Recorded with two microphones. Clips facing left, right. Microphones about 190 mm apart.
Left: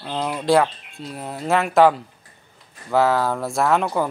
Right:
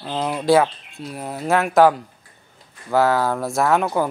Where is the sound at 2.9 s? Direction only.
Centre (ahead or behind).